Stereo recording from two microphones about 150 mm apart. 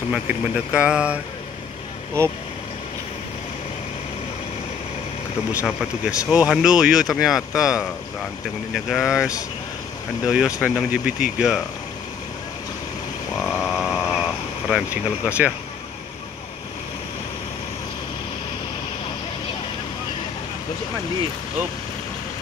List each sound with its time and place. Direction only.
0.1 s speech: 10° right (ahead or behind)
5.5 s speech: 20° left (ahead or behind)
6.0 s speech: 5° right (ahead or behind)
8.7 s speech: 5° right (ahead or behind)
13.7 s vehicle: centre (ahead or behind)